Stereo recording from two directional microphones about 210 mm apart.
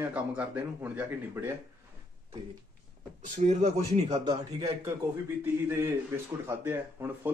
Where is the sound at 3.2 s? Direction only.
40° right (ahead or behind).